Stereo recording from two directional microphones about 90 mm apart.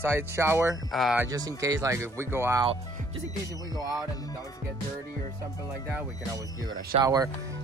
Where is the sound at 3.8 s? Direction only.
45° right (ahead or behind).